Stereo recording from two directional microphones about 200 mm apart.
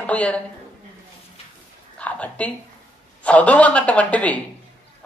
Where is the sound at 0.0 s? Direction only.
5° left (ahead or behind).